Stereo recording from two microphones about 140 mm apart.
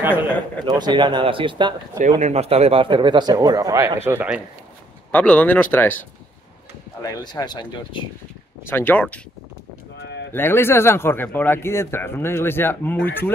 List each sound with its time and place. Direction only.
0.7 s speech: 30° right (ahead or behind)
2.0 s speech: 60° right (ahead or behind); by 4.4 s 15° right (ahead or behind)
5.1 s speech: 10° left (ahead or behind)
7.0 s speech: 30° left (ahead or behind)
8.6 s speech: 15° left (ahead or behind)
10.3 s speech: 15° left (ahead or behind)